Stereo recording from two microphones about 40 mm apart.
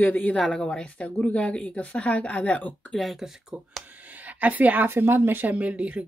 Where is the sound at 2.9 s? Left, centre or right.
Centre.